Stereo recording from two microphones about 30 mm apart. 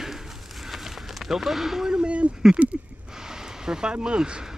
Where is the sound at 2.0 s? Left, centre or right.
Right.